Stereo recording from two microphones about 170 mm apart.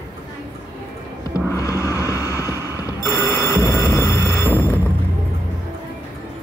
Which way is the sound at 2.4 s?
15° right (ahead or behind).